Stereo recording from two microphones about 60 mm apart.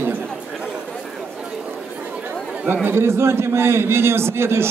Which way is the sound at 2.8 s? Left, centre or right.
Right.